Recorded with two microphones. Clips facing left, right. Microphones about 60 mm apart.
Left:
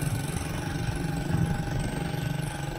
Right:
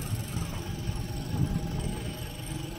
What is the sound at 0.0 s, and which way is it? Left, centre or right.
Vehicle, left.